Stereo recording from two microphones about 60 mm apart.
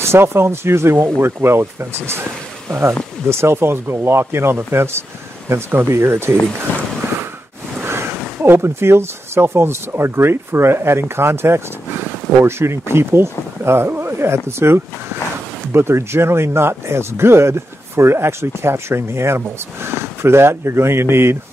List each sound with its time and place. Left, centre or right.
0.0 s speech: right
3.3 s speech: right
6.7 s speech: left
8.5 s speech: right